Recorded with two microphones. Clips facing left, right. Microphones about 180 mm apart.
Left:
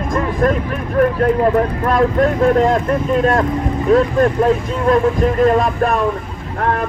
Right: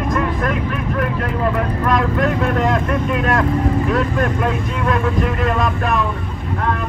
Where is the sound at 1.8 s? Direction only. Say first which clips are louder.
Left 1 dB; 35° left (ahead or behind).